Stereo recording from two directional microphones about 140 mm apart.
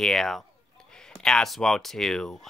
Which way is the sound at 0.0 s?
5° left (ahead or behind).